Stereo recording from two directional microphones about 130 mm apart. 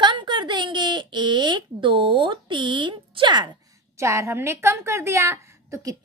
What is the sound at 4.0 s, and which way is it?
A woman's voice, 20° right (ahead or behind).